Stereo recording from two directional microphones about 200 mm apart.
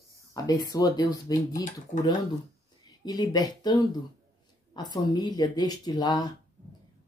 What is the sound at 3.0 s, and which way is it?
Speech, 20° left (ahead or behind).